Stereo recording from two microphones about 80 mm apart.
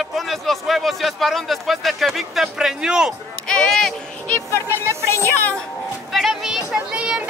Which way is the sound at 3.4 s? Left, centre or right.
Centre.